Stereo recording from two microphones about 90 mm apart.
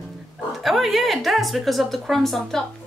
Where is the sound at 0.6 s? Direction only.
Centre (ahead or behind).